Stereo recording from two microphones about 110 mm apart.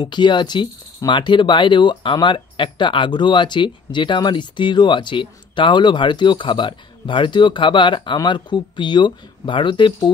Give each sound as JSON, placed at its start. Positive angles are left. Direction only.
{"t": 0.0, "sound": "speech", "side_deg": 45}